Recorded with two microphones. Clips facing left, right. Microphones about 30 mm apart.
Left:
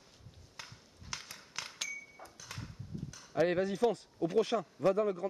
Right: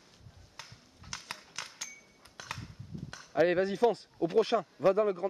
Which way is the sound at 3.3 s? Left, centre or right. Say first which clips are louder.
Right 4 dB; right.